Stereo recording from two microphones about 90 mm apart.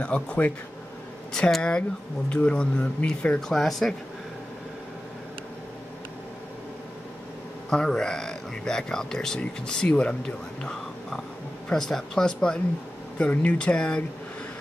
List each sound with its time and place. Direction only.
0.0 s speech: 15° left (ahead or behind)
7.7 s speech: 10° left (ahead or behind)